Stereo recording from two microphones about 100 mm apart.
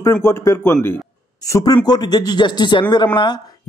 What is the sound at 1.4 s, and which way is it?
A man's voice, 40° left (ahead or behind).